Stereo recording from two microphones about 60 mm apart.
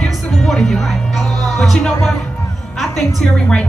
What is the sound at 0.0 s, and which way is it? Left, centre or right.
Music, centre.